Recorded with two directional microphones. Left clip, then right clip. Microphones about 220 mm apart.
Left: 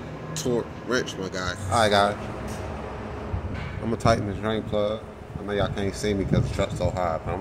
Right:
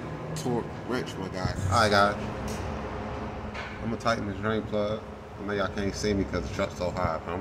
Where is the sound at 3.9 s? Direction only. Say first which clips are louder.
Left 6 dB; 30° left (ahead or behind).